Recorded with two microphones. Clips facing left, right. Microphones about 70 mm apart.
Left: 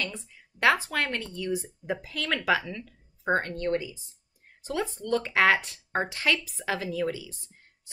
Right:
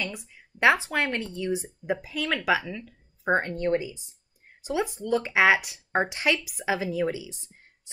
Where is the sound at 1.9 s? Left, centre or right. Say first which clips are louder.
Right 2 dB; centre.